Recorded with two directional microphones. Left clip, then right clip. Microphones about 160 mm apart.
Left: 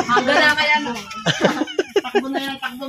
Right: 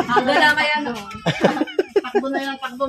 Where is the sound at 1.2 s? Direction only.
10° right (ahead or behind).